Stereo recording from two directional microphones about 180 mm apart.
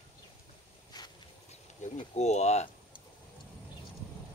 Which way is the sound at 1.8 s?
45° left (ahead or behind).